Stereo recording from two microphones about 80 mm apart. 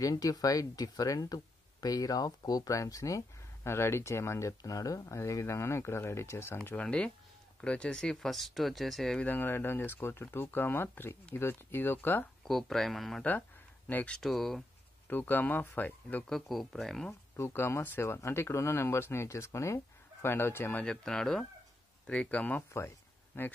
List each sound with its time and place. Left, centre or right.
0.0 s speech: left; by 9.2 s centre
9.2 s speech: left
12.4 s speech: centre
13.8 s speech: left
14.1 s speech: centre
15.0 s speech: left
16.3 s speech: centre
17.4 s speech: left
20.8 s speech: centre
22.7 s a sound: left